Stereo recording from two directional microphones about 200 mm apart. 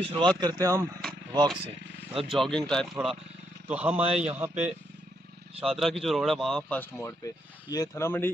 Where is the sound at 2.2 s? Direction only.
Centre (ahead or behind).